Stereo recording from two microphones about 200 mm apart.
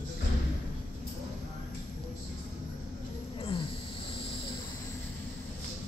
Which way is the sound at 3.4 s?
25° left (ahead or behind).